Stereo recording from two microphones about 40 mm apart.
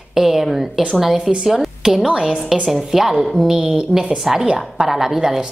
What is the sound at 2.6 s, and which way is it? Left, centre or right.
A woman's voice, centre.